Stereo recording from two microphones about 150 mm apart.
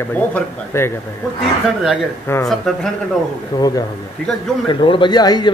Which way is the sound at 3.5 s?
25° left (ahead or behind).